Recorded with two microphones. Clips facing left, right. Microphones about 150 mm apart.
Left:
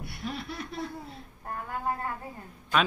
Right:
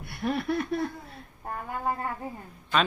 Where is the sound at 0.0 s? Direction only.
55° right (ahead or behind).